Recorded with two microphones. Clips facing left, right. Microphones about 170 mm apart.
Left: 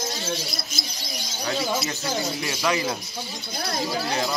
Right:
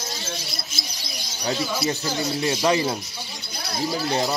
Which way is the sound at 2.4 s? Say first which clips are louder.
Right 7 dB; 30° right (ahead or behind).